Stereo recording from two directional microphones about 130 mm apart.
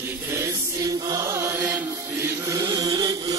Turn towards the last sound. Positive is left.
turn(degrees=-30)  # may be behind; listen again after turning